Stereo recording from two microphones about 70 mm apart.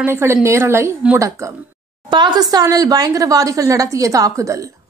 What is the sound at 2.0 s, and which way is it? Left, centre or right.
A woman's voice, right.